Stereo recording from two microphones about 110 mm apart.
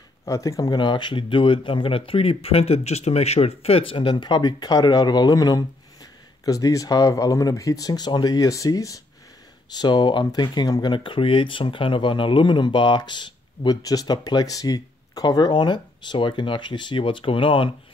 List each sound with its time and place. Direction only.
0.2 s speech: 30° left (ahead or behind); by 17.6 s 55° left (ahead or behind)